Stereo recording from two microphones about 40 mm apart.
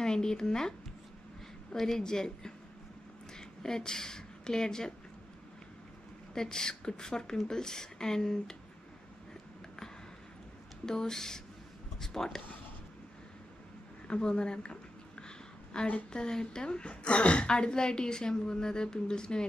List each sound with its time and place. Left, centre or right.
0.0 s speech: centre
1.8 s a woman's voice: centre
6.3 s speech: centre
10.9 s speech: centre
14.0 s a woman's voice: left
15.2 s a sound: left
16.1 s a woman's voice: centre